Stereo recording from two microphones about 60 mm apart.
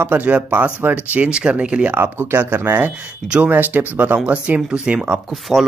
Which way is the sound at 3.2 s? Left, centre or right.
Right.